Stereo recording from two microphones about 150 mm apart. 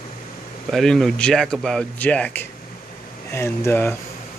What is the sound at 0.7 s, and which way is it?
Speech, centre (ahead or behind).